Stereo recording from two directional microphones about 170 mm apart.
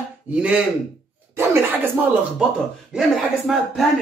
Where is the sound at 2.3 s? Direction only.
Centre (ahead or behind).